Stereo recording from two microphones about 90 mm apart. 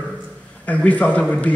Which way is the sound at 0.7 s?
15° left (ahead or behind).